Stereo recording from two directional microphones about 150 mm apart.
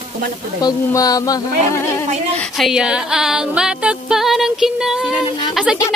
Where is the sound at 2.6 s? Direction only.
5° right (ahead or behind).